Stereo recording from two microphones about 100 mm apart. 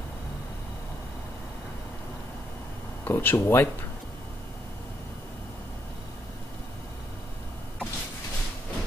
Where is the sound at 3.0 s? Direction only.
20° left (ahead or behind).